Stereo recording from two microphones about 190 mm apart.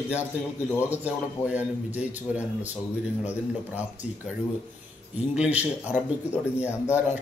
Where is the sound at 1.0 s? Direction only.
10° right (ahead or behind).